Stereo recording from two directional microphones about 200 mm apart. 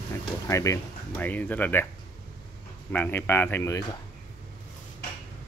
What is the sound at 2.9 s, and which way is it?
Speech, 10° left (ahead or behind).